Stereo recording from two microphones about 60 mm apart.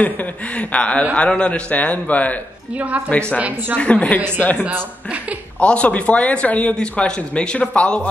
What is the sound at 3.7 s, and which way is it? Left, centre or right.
Speech, left.